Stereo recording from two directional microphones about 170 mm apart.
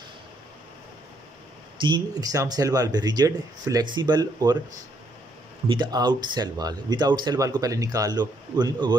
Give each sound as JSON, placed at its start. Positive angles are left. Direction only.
{"t": 1.8, "sound": "speech", "side_deg": -25}
{"t": 5.7, "sound": "speech", "side_deg": -25}